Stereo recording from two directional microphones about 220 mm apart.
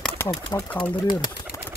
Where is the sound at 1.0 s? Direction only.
20° left (ahead or behind).